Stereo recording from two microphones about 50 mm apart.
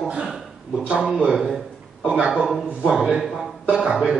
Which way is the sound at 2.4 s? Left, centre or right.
Centre.